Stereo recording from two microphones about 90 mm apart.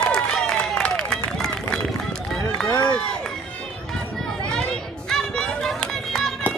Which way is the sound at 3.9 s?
5° left (ahead or behind).